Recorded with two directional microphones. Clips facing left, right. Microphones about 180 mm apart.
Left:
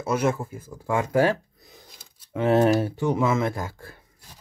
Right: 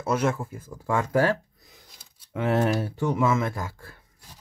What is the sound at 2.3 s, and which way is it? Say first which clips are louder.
Speech: left 4 dB; 25° left (ahead or behind).